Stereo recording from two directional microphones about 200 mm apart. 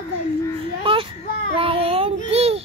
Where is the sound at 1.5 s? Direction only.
25° right (ahead or behind).